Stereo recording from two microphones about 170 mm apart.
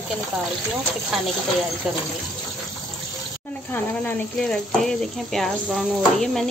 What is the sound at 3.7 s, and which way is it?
Speech, 5° left (ahead or behind).